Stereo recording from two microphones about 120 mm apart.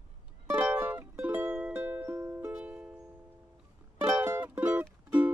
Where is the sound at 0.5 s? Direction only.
15° right (ahead or behind).